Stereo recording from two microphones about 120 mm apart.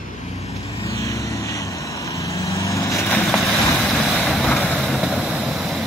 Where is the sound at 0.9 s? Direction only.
25° left (ahead or behind).